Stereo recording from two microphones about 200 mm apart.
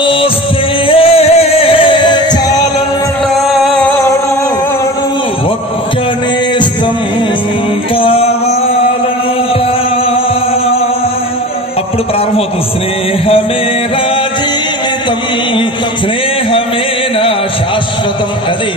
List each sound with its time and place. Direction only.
0.0 s music: 25° left (ahead or behind)
3.5 s music: centre (ahead or behind)
7.9 s music: 25° left (ahead or behind)